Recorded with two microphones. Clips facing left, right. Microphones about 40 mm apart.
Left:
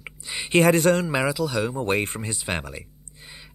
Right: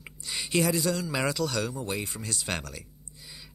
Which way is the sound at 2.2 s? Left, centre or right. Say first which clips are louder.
Left 4 dB; left.